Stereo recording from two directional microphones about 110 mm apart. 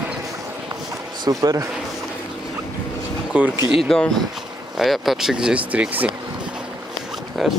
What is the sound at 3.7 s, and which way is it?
Speech, centre (ahead or behind).